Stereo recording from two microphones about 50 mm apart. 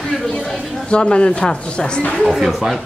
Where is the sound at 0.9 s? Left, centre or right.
Centre.